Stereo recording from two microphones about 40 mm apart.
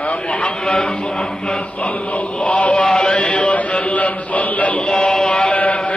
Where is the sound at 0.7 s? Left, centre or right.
Left.